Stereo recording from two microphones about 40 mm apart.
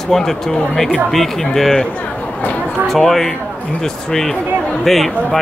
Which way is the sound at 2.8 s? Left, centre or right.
Centre.